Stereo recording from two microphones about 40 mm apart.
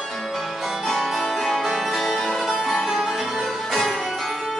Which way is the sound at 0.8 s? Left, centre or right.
Centre.